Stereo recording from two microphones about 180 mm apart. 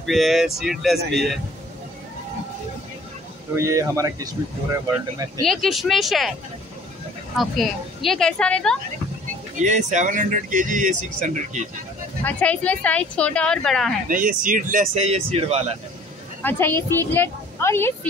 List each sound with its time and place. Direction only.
0.0 s speech: centre (ahead or behind)
3.5 s speech: 15° right (ahead or behind)
5.4 s speech: centre (ahead or behind)
7.3 s speech: centre (ahead or behind)
9.6 s speech: 45° right (ahead or behind)
12.2 s speech: 10° left (ahead or behind)
14.0 s speech: 50° right (ahead or behind); by 15.6 s 30° right (ahead or behind)
16.4 s speech: 10° left (ahead or behind)